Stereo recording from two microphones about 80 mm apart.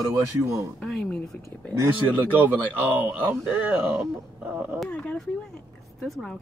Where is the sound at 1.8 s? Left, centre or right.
Right.